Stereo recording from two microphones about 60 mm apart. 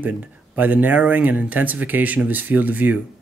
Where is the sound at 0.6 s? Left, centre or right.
Right.